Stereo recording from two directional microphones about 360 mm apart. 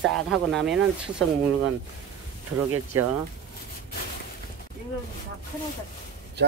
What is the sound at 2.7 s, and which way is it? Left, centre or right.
Speech, right.